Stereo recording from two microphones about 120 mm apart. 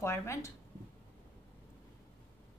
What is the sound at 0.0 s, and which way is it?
Speech, 20° left (ahead or behind).